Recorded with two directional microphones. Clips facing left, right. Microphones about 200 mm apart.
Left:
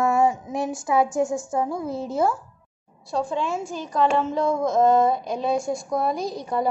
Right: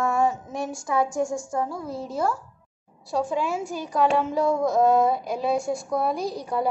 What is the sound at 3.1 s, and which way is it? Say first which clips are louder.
A woman's voice: even; 10° right (ahead or behind).